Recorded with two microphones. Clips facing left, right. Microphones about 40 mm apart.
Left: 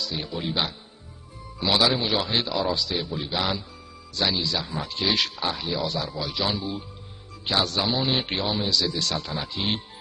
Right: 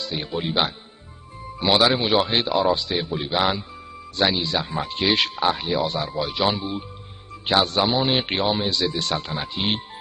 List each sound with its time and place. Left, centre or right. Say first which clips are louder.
0.0 s speech: right 3 dB; right